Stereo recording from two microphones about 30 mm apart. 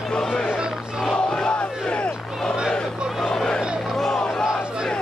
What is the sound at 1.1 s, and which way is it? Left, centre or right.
Crowd, left.